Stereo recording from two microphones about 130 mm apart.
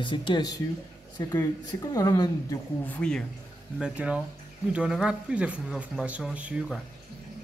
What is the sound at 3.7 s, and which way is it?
Speech, 5° right (ahead or behind).